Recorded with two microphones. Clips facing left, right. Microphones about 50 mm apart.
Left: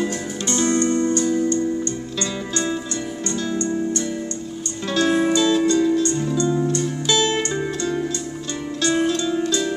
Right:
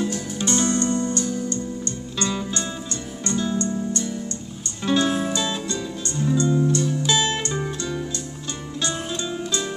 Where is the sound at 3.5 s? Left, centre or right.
Left.